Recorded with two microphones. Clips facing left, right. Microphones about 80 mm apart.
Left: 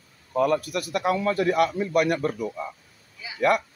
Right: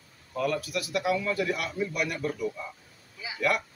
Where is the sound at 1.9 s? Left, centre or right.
Left.